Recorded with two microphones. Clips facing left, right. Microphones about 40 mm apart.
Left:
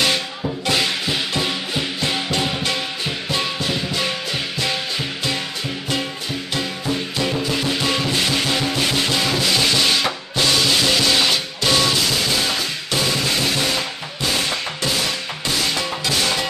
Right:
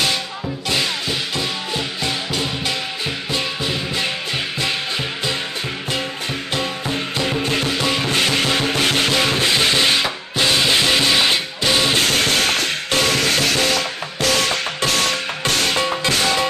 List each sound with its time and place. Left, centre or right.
6.9 s music: right; by 11.9 s centre
11.9 s music: right
14.9 s music: right